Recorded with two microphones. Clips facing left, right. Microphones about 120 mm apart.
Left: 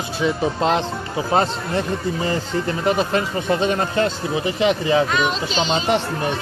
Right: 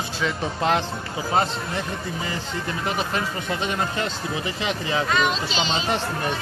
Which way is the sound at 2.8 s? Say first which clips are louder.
Left 6 dB; 30° left (ahead or behind).